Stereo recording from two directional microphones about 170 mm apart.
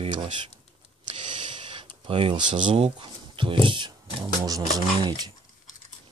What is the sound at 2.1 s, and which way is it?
Speech, 30° right (ahead or behind).